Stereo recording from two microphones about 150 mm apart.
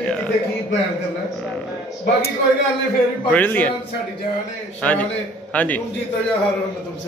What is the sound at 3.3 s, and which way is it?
Speech, 10° left (ahead or behind).